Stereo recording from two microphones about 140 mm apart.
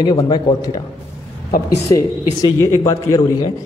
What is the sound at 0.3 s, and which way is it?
Speech, 30° left (ahead or behind).